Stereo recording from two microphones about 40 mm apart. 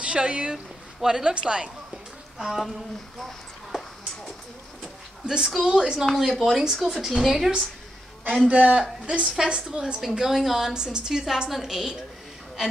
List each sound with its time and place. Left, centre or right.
0.0 s a woman's voice: right
2.3 s speech: centre
4.8 s a sound: right
5.4 s a woman's voice: centre
6.0 s a woman's voice: centre
8.5 s a man's voice: right
10.0 s a woman's voice: centre